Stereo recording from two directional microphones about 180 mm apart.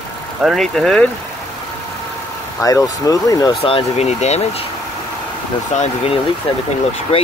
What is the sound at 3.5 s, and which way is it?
Speech, 30° left (ahead or behind).